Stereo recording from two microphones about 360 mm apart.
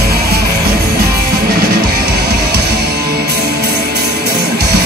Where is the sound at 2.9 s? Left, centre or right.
Right.